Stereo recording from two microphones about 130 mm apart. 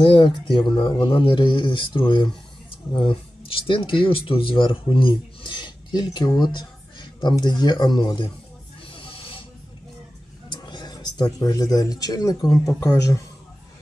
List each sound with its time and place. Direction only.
0.0 s speech: 40° left (ahead or behind)
8.9 s snake: 45° left (ahead or behind)
10.5 s a man's voice: 35° left (ahead or behind)